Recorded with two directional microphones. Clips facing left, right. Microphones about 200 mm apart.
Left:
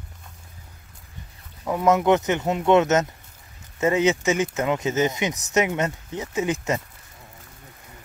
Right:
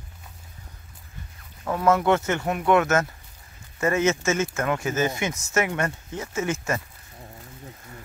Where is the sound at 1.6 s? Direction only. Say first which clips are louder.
Left 1 dB; 15° left (ahead or behind).